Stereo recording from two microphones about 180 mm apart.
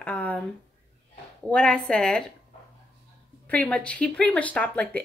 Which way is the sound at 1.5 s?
5° left (ahead or behind).